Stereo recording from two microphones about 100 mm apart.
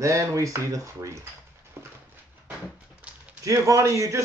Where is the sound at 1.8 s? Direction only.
25° right (ahead or behind).